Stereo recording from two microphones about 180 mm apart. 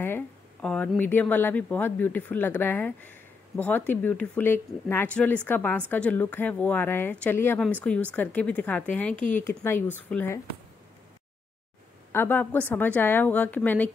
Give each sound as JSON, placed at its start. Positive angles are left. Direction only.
{"t": 0.0, "sound": "speech", "side_deg": 10}
{"t": 12.1, "sound": "speech", "side_deg": 10}